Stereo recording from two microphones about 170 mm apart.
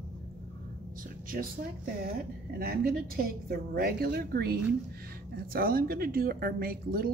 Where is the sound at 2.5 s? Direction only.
60° right (ahead or behind).